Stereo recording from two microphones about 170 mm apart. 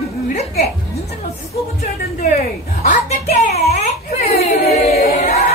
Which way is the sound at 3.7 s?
40° left (ahead or behind).